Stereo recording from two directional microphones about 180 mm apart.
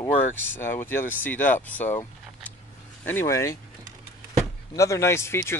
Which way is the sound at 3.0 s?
15° left (ahead or behind).